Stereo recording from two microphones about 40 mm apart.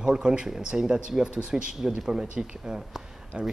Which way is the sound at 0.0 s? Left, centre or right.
Right.